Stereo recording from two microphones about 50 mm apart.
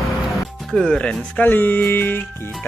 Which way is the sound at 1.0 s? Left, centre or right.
Left.